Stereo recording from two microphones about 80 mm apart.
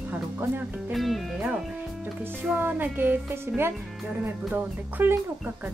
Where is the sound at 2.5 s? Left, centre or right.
Right.